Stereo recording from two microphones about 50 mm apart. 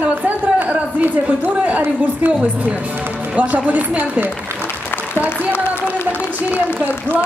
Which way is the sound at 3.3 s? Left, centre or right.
Right.